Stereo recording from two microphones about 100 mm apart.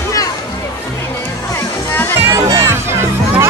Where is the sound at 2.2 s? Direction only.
30° right (ahead or behind).